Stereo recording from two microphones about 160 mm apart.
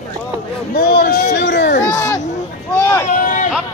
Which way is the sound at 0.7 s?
80° left.